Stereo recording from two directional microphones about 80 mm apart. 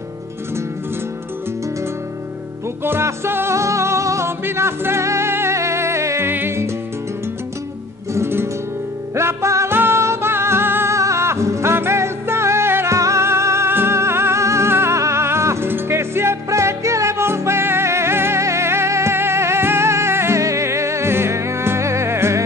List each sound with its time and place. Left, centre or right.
2.8 s music: right
8.1 s music: right